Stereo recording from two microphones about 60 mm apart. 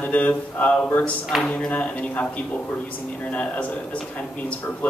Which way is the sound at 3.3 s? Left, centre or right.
Left.